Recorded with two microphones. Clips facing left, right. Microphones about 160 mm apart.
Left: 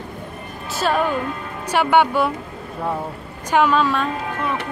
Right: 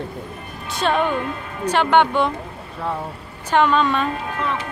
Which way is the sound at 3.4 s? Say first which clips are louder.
Even; 10° left (ahead or behind).